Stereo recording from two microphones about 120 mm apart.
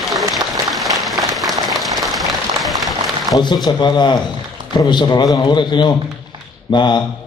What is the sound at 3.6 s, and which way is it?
Speech, 40° left (ahead or behind).